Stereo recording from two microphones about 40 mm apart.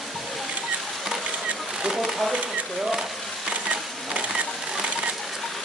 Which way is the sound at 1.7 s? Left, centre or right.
Centre.